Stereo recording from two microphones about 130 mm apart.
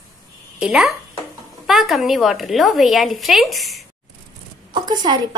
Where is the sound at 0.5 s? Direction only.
Centre (ahead or behind).